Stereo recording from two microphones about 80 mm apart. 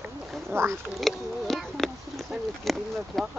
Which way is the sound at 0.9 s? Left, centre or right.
Centre.